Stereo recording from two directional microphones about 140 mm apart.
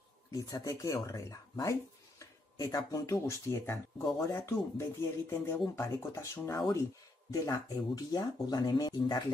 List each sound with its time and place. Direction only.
0.3 s speech: 25° left (ahead or behind)